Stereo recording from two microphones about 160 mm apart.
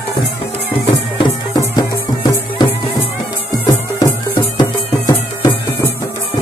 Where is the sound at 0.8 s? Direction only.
30° left (ahead or behind).